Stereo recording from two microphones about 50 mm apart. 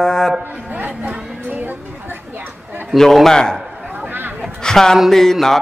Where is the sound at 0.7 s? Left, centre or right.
Right.